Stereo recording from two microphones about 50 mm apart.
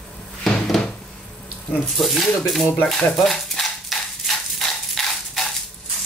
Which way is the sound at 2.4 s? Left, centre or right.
Centre.